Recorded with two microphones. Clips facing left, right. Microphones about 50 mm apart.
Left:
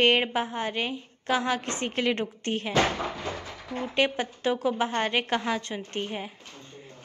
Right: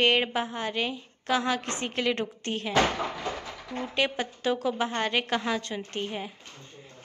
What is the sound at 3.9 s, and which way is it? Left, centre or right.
A woman's voice, left.